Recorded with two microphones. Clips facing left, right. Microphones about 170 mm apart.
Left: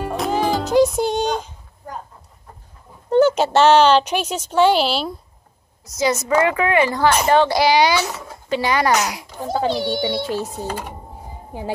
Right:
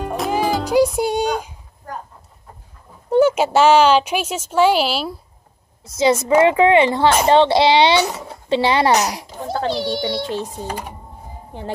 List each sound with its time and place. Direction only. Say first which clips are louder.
0.0 s music: even; centre (ahead or behind)
0.9 s a sound: right 1 dB; 10° right (ahead or behind)
3.1 s a woman's voice: even; 10° right (ahead or behind)
5.9 s a woman's voice: right 4 dB; 25° right (ahead or behind)
9.4 s a child's voice: left 1 dB; centre (ahead or behind)